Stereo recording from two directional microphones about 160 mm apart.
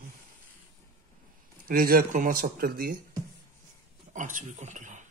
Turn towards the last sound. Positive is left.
turn(degrees=-50)  # may be behind; listen again after turning